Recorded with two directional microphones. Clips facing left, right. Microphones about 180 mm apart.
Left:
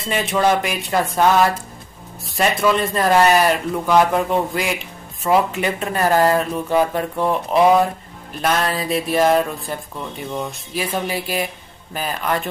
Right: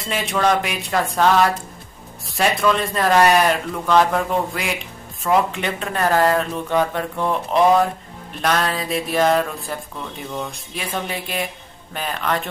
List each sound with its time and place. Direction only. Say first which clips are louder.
0.0 s speech: left 2 dB; centre (ahead or behind)